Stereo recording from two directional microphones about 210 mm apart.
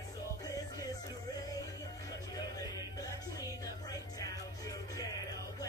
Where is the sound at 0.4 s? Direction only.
15° left (ahead or behind).